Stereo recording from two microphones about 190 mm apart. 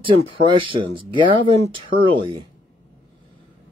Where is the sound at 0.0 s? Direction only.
25° right (ahead or behind).